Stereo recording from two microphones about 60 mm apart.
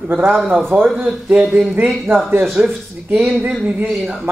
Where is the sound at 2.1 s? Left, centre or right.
Right.